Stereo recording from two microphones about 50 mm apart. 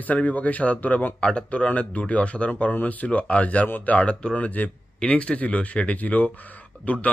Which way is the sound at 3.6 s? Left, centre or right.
Left.